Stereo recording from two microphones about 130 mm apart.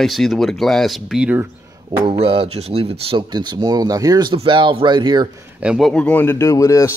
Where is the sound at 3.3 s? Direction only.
35° right (ahead or behind).